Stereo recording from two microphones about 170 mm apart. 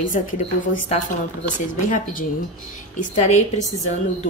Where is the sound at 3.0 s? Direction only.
45° left (ahead or behind).